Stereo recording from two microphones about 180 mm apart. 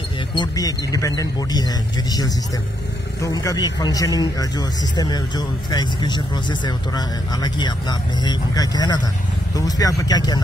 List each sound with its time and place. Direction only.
0.3 s a man's voice: 20° left (ahead or behind)